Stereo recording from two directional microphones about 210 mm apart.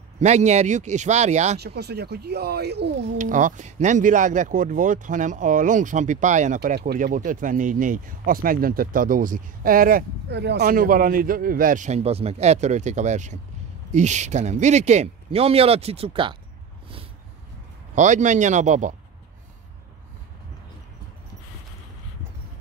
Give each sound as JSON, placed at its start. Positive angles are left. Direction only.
{"t": 0.2, "sound": "speech", "side_deg": -35}
{"t": 1.6, "sound": "speech", "side_deg": -50}
{"t": 3.2, "sound": "speech", "side_deg": -40}
{"t": 10.6, "sound": "speech", "side_deg": -40}
{"t": 17.9, "sound": "speech", "side_deg": -35}